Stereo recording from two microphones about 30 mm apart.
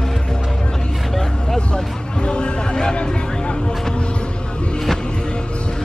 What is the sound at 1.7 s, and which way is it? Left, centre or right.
Music, left.